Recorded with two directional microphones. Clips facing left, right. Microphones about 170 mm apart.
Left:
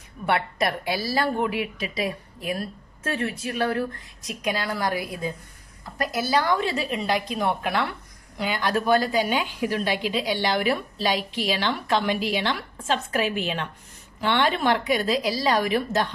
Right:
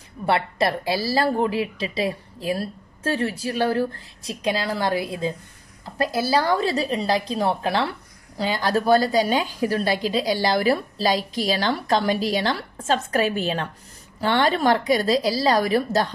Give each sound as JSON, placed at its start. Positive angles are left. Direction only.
{"t": 0.2, "sound": "a woman's voice", "side_deg": -30}